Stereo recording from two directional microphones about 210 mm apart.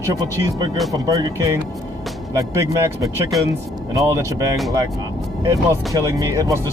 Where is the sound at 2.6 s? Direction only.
15° right (ahead or behind).